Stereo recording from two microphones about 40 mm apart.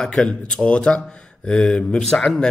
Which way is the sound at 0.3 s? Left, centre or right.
Centre.